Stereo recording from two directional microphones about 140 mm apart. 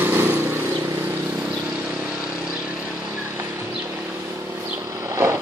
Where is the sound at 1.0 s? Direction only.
10° right (ahead or behind).